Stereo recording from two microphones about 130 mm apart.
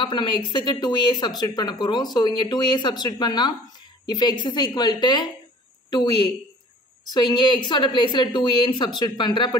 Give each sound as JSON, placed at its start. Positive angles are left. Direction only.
{"t": 0.0, "sound": "a woman's voice", "side_deg": 40}